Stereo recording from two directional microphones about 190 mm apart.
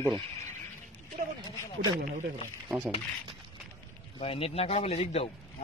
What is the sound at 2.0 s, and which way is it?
Speech, 40° right (ahead or behind).